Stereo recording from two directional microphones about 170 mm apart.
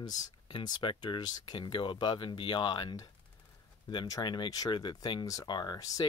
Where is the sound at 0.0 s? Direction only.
25° left (ahead or behind).